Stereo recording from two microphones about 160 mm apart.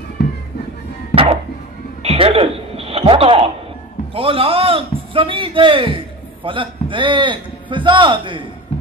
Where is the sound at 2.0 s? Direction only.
40° right (ahead or behind).